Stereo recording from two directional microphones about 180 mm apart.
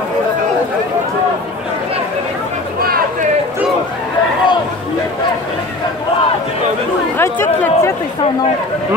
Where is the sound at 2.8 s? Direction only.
55° right (ahead or behind).